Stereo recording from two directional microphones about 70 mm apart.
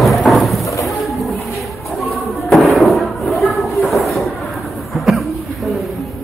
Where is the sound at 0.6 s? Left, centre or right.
Left.